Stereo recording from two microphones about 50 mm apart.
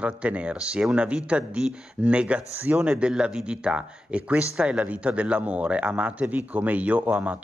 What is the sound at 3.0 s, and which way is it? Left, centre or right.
Speech, centre.